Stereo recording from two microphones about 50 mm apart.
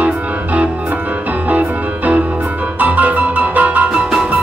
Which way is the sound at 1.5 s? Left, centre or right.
Right.